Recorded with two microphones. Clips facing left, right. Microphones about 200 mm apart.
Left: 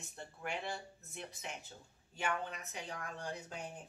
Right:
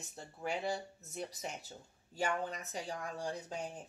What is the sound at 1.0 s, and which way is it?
Speech, 35° right (ahead or behind).